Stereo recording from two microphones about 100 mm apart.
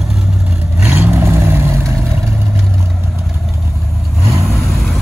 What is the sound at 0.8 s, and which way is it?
Vehicle, 20° right (ahead or behind).